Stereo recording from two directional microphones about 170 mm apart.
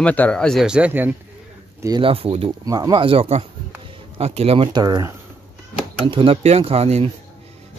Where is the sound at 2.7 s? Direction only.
25° right (ahead or behind).